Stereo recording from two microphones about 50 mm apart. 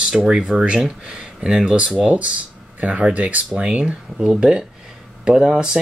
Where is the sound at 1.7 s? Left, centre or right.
Right.